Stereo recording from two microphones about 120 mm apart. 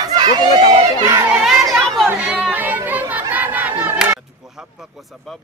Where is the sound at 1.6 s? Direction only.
25° right (ahead or behind).